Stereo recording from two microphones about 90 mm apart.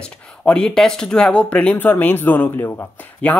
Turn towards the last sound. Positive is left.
turn(degrees=15)  # may be behind; listen again after turning